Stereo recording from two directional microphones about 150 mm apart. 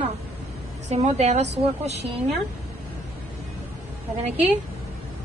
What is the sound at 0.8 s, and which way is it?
A woman's voice, 50° right (ahead or behind).